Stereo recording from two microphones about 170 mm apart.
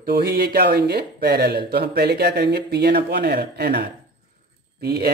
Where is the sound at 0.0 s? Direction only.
70° right (ahead or behind).